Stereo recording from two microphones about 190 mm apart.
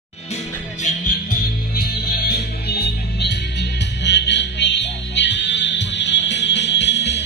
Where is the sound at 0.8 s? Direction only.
45° left (ahead or behind).